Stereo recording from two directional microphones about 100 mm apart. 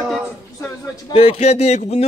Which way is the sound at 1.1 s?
75° left (ahead or behind).